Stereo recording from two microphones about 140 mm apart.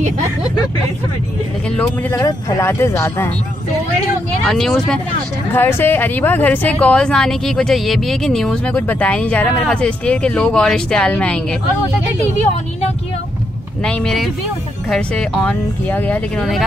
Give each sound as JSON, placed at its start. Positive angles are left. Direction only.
{"t": 1.8, "sound": "speech", "side_deg": 20}
{"t": 4.5, "sound": "speech", "side_deg": 5}
{"t": 5.5, "sound": "a woman's voice", "side_deg": 15}
{"t": 13.8, "sound": "a woman's voice", "side_deg": 5}